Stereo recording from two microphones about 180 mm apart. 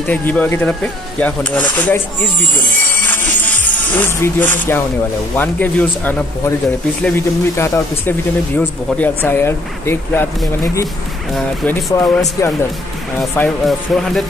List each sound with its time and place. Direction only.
0.0 s speech: 10° left (ahead or behind)
2.8 s music: 10° left (ahead or behind)
3.4 s speech: 10° left (ahead or behind)
12.0 s speech: 20° left (ahead or behind)
13.2 s speech: centre (ahead or behind)